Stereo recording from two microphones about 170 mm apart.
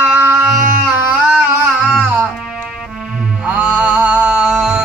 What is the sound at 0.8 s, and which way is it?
Music, 10° right (ahead or behind).